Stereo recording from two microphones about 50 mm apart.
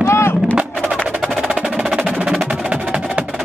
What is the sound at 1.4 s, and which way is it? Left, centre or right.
Music, centre.